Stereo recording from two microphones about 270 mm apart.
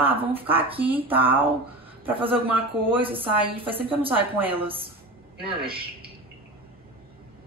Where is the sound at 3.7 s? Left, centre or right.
Centre.